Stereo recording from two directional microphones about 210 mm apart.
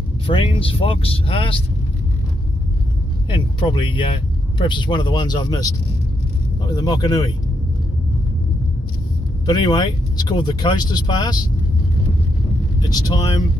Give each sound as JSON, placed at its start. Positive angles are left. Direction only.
{"t": 0.3, "sound": "speech", "side_deg": 25}
{"t": 3.3, "sound": "speech", "side_deg": 20}
{"t": 9.5, "sound": "speech", "side_deg": 20}
{"t": 12.8, "sound": "speech", "side_deg": 20}